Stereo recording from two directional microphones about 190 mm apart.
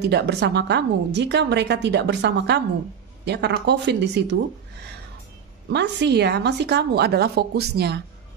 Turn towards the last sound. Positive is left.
turn(degrees=-60)  # may be behind; listen again after turning